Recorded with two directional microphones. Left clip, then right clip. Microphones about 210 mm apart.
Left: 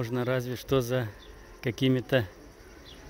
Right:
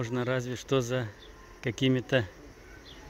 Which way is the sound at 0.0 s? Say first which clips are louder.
Left 1 dB; 5° left (ahead or behind).